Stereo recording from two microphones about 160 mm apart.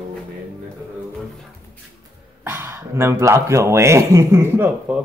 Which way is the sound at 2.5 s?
15° right (ahead or behind).